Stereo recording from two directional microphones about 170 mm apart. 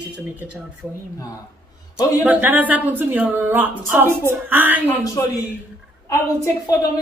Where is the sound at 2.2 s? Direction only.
10° right (ahead or behind).